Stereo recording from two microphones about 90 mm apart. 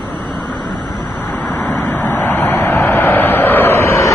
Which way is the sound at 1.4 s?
15° left (ahead or behind).